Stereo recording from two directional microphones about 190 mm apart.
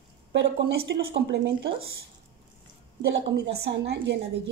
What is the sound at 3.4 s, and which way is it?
Speech, 70° right (ahead or behind).